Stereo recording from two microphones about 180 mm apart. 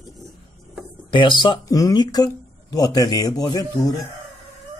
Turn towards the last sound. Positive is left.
turn(degrees=25)  # may be behind; listen again after turning